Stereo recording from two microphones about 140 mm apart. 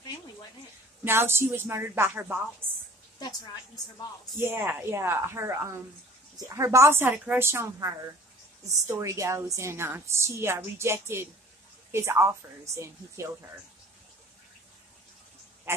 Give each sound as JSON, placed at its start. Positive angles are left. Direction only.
{"t": 1.0, "sound": "a woman's voice", "side_deg": -15}
{"t": 3.2, "sound": "a woman's voice", "side_deg": 25}
{"t": 4.4, "sound": "a woman's voice", "side_deg": -15}